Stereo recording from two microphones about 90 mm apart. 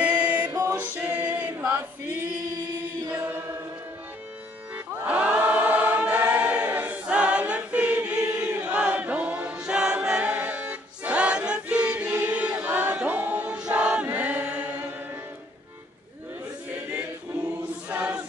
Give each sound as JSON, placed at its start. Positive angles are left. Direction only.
{"t": 0.0, "sound": "music", "side_deg": -15}
{"t": 0.7, "sound": "chant", "side_deg": -20}
{"t": 4.7, "sound": "choir", "side_deg": -15}
{"t": 14.0, "sound": "chant", "side_deg": -20}
{"t": 17.8, "sound": "choir", "side_deg": -15}